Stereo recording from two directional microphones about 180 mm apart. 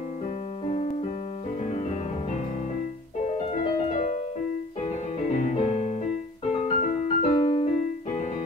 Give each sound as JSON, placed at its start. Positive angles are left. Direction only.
{"t": 3.9, "sound": "music", "side_deg": 45}
{"t": 5.3, "sound": "piano", "side_deg": 40}
{"t": 7.4, "sound": "keyboard", "side_deg": 30}